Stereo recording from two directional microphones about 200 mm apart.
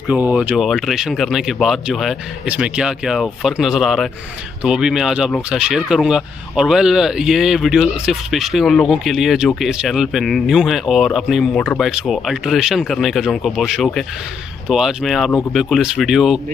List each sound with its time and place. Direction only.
0.1 s speech: 5° right (ahead or behind)